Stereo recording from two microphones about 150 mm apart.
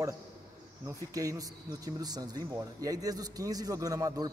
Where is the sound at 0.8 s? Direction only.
20° right (ahead or behind).